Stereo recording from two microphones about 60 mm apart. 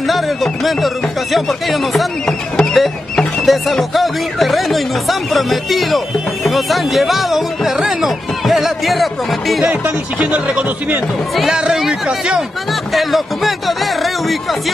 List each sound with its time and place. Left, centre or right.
0.0 s music: centre
2.2 s speech: centre
2.7 s music: centre
9.7 s speech: right
11.5 s speech: centre
12.9 s a sound: centre